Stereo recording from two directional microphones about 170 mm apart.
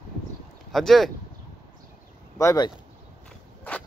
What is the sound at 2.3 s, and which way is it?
Speech, 20° left (ahead or behind).